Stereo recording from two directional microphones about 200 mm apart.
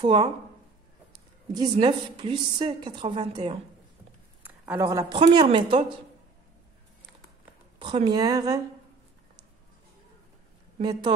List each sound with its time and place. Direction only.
0.0 s a woman's voice: 25° right (ahead or behind)
1.5 s a woman's voice: 20° right (ahead or behind)
4.4 s speech: 15° right (ahead or behind)
7.8 s a woman's voice: 25° right (ahead or behind)
10.8 s a woman's voice: 20° right (ahead or behind)